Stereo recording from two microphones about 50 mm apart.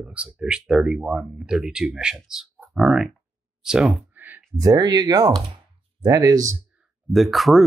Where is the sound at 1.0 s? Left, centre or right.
Right.